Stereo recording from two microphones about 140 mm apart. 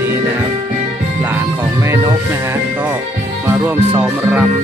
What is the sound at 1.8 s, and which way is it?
Speech, 20° right (ahead or behind).